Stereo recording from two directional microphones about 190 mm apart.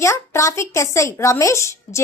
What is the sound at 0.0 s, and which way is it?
A woman's voice, 15° left (ahead or behind).